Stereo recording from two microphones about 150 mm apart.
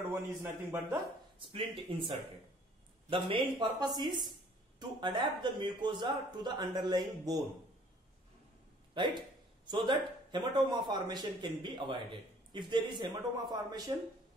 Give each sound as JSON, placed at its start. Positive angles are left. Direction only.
{"t": 0.1, "sound": "a man's voice", "side_deg": -15}
{"t": 1.5, "sound": "a man's voice", "side_deg": -35}
{"t": 8.9, "sound": "a man's voice", "side_deg": -30}